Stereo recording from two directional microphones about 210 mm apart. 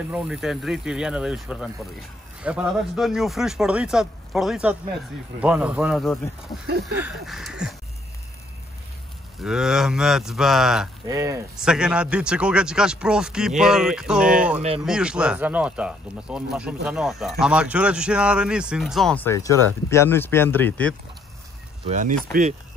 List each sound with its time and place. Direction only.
0.1 s speech: 5° right (ahead or behind)
9.4 s speech: 5° right (ahead or behind)
11.1 s speech: 15° right (ahead or behind)
11.6 s speech: 5° right (ahead or behind)
21.8 s speech: 35° right (ahead or behind)